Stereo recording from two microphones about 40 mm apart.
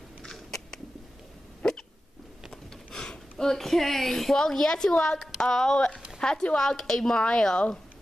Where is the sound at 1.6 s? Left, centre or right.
Left.